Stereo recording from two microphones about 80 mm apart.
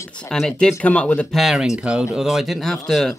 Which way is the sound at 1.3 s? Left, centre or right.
Centre.